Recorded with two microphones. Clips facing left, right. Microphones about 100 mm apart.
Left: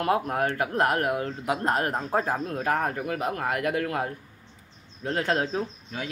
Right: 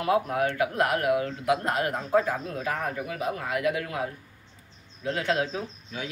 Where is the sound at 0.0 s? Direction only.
45° left (ahead or behind).